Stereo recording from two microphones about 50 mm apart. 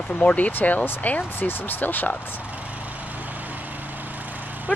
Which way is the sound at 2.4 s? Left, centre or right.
Right.